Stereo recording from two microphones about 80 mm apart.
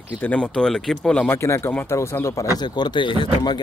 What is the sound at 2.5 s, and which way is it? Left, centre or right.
Speech, left.